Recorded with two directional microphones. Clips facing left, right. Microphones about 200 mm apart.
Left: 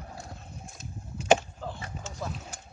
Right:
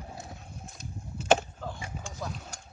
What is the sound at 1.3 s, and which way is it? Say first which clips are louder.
Skateboard: left 1 dB; 5° left (ahead or behind).